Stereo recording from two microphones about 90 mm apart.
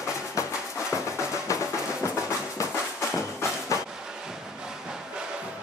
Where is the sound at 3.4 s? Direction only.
30° left (ahead or behind).